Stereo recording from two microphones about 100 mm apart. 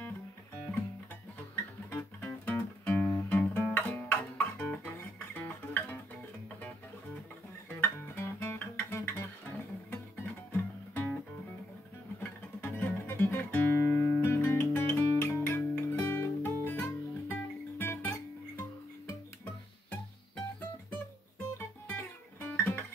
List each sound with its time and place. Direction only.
1.9 s music: 15° left (ahead or behind)
7.8 s guitar: 25° left (ahead or behind)
9.8 s music: 20° left (ahead or behind)
12.2 s music: 20° left (ahead or behind)
21.5 s guitar: 20° left (ahead or behind)